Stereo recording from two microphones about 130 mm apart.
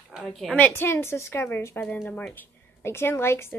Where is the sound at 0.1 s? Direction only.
5° left (ahead or behind).